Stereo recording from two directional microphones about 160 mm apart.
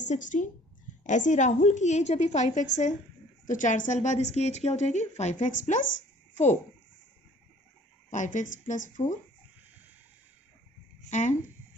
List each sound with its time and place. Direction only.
0.0 s a woman's voice: 50° left (ahead or behind)
8.1 s a woman's voice: 50° left (ahead or behind)
11.1 s speech: 50° left (ahead or behind)